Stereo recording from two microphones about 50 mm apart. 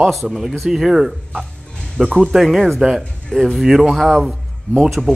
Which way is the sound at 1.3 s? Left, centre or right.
Centre.